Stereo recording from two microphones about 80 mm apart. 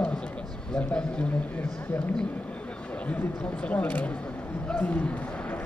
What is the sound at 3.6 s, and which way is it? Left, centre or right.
Speech, centre.